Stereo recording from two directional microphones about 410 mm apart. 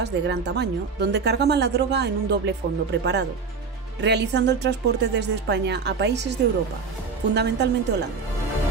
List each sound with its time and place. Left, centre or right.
0.0 s speech: right